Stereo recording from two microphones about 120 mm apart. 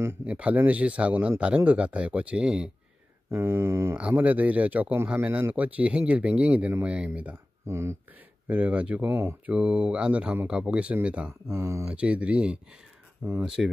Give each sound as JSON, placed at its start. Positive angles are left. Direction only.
{"t": 0.2, "sound": "speech", "side_deg": -10}
{"t": 3.3, "sound": "mantra", "side_deg": -20}
{"t": 4.0, "sound": "speech", "side_deg": -10}
{"t": 7.6, "sound": "mantra", "side_deg": -25}
{"t": 8.5, "sound": "speech", "side_deg": -10}
{"t": 11.4, "sound": "mantra", "side_deg": -25}
{"t": 11.9, "sound": "speech", "side_deg": -10}